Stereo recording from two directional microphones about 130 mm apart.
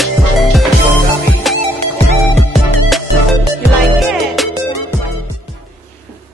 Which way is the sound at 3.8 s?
Centre (ahead or behind).